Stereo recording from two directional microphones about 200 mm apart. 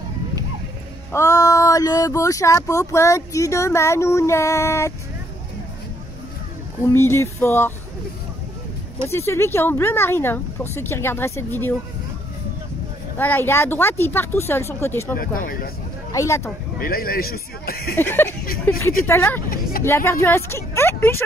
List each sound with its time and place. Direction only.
1.1 s speech: 15° left (ahead or behind)
6.9 s speech: 10° left (ahead or behind)
9.1 s speech: 15° left (ahead or behind)
13.2 s speech: 10° left (ahead or behind)
15.1 s speech: 45° left (ahead or behind)
16.1 s speech: 15° left (ahead or behind)
16.8 s speech: 45° left (ahead or behind)
17.9 s speech: 10° left (ahead or behind)